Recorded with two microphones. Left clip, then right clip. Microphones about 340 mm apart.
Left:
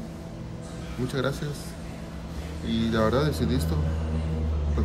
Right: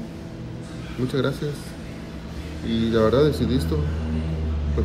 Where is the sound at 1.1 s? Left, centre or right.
Centre.